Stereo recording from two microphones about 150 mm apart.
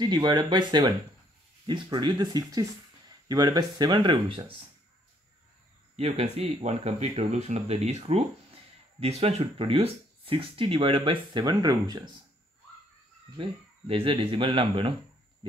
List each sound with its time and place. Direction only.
0.0 s speech: 30° right (ahead or behind)
5.9 s speech: 45° right (ahead or behind); by 12.1 s 25° right (ahead or behind)
13.4 s speech: 40° right (ahead or behind)